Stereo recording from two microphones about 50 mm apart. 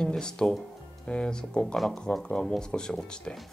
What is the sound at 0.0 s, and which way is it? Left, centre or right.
Speech, centre.